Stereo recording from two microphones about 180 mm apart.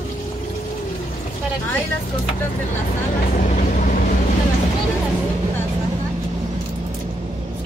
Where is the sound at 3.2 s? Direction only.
45° left (ahead or behind).